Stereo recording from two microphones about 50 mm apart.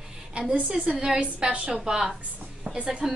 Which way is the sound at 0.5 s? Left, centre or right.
Right.